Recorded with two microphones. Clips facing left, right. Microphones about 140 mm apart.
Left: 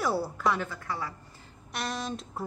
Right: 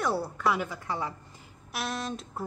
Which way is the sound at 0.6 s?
15° right (ahead or behind).